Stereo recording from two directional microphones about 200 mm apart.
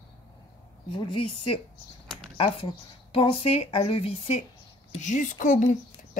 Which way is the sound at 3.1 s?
25° left (ahead or behind).